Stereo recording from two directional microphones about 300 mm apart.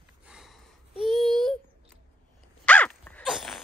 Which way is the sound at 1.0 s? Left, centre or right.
Centre.